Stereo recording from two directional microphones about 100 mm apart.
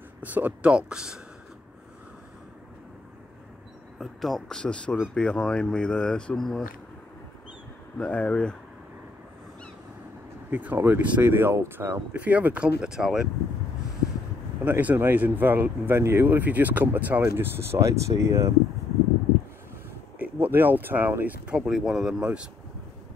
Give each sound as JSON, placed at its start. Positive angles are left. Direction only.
{"t": 0.2, "sound": "speech", "side_deg": -15}
{"t": 4.0, "sound": "speech", "side_deg": 0}
{"t": 8.0, "sound": "speech", "side_deg": 15}
{"t": 10.5, "sound": "speech", "side_deg": -20}
{"t": 14.6, "sound": "speech", "side_deg": -15}
{"t": 20.2, "sound": "speech", "side_deg": -20}